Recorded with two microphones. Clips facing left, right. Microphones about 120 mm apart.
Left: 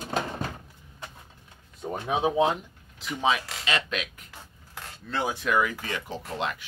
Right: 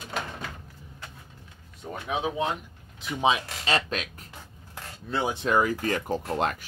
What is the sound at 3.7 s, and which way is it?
Speech, 35° right (ahead or behind).